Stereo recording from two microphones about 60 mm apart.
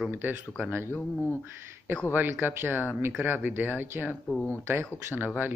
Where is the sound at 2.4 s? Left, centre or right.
Right.